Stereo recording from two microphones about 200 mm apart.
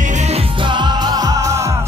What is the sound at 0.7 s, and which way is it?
Music, 20° right (ahead or behind).